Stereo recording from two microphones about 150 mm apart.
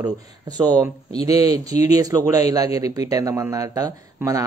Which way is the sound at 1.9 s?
25° right (ahead or behind).